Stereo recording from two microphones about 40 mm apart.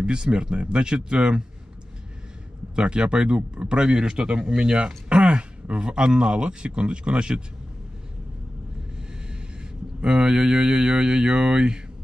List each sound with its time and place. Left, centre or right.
0.0 s a man's voice: right
2.7 s a man's voice: right
10.0 s a man's voice: right